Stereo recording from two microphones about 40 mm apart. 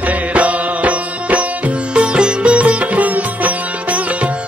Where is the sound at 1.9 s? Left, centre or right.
Right.